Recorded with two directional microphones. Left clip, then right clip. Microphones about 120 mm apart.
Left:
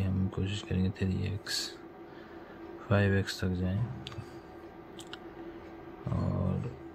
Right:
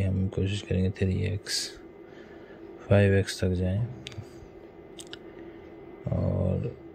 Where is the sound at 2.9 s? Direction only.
25° right (ahead or behind).